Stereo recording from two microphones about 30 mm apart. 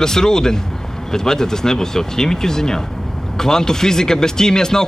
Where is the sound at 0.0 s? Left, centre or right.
Left.